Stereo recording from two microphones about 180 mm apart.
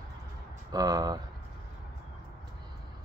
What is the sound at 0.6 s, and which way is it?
Speech, 20° right (ahead or behind).